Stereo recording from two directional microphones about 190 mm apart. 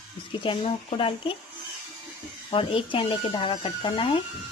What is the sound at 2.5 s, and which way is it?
Speech, 30° left (ahead or behind).